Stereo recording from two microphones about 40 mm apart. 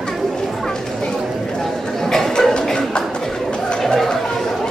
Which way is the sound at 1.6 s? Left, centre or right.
Centre.